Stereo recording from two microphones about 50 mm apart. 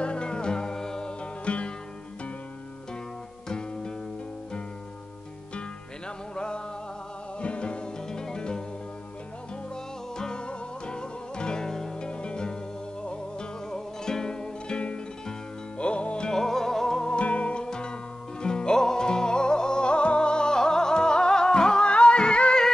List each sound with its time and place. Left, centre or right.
0.0 s music: centre
3.4 s music: centre
6.0 s music: centre
10.1 s music: centre
16.3 s music: centre
17.1 s music: left